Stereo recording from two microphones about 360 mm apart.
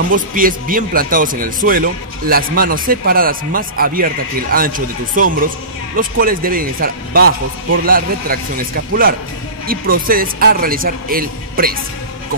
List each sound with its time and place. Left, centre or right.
0.1 s speech: right